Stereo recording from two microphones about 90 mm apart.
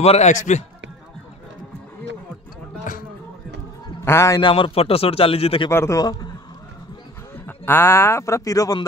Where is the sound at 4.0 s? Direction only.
30° left (ahead or behind).